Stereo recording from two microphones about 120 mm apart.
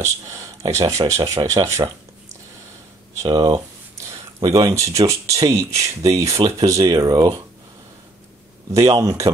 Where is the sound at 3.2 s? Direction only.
35° right (ahead or behind).